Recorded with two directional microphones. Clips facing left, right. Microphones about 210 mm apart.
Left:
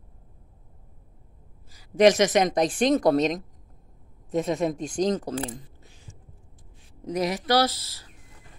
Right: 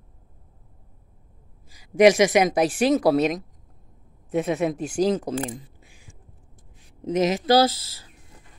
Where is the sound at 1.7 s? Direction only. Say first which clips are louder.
Right 2 dB; 10° right (ahead or behind).